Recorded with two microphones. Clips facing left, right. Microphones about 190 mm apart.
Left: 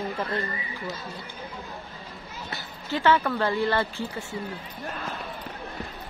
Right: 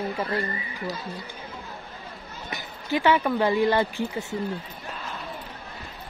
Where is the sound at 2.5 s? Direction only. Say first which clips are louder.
Right 4 dB; 15° right (ahead or behind).